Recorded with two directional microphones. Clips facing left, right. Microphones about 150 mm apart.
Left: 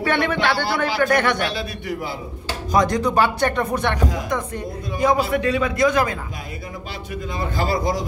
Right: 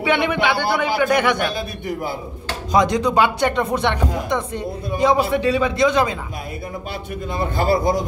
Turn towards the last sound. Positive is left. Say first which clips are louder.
# right 4 dB
turn(degrees=-55)  # may be behind; listen again after turning